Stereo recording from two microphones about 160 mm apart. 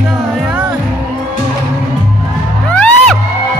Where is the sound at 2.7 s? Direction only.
10° left (ahead or behind).